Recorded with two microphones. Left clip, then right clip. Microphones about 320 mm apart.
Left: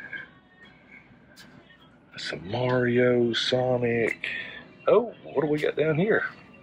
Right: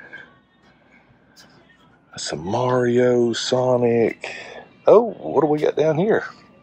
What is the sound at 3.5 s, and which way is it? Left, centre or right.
Speech, centre.